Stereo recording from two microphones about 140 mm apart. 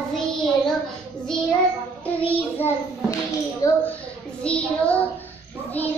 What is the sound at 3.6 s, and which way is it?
Speech, 25° left (ahead or behind).